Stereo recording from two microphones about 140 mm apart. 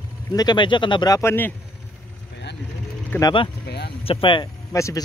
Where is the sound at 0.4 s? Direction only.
30° left (ahead or behind); by 1.5 s 15° left (ahead or behind).